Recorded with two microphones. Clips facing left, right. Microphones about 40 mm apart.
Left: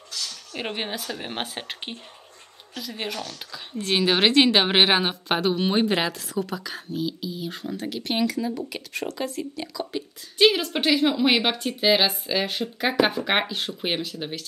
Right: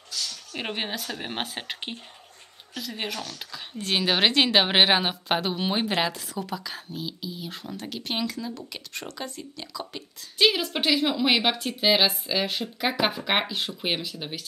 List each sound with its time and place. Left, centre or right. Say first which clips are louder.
0.1 s a sound: even; left
0.6 s speech: left 1 dB; centre
3.3 s speech: left 3 dB; centre